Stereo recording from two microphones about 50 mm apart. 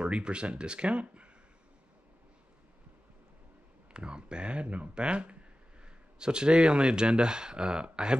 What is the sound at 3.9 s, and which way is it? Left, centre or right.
Speech, centre.